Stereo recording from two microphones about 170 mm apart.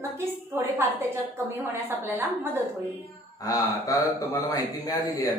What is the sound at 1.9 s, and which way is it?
Speech, 10° right (ahead or behind).